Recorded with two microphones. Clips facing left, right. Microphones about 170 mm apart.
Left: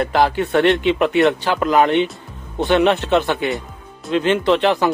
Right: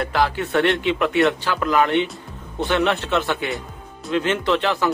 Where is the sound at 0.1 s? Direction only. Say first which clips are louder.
Left 3 dB; 20° left (ahead or behind).